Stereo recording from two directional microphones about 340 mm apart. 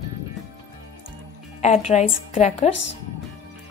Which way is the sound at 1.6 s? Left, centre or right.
Centre.